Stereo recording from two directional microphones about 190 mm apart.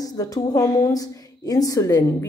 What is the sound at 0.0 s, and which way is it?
A woman's voice, 20° left (ahead or behind).